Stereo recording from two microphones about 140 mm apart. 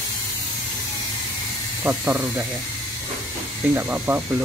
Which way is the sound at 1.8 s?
10° right (ahead or behind).